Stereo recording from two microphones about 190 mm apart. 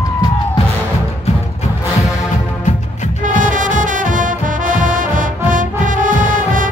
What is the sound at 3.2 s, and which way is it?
Music, 45° right (ahead or behind).